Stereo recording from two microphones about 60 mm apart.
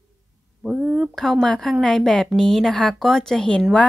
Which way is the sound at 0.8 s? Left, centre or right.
Centre.